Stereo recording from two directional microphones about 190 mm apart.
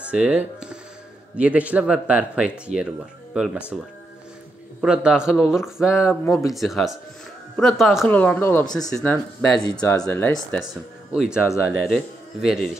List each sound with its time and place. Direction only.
0.0 s a man's voice: 5° right (ahead or behind)
4.8 s a man's voice: 5° right (ahead or behind)
5.8 s speech: 15° left (ahead or behind)
6.5 s a man's voice: centre (ahead or behind)
8.1 s speech: 10° left (ahead or behind)
9.7 s speech: 20° left (ahead or behind)
11.1 s a man's voice: 5° right (ahead or behind)